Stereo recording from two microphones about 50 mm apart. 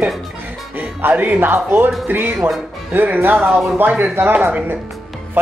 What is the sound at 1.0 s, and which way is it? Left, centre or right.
Speech, right.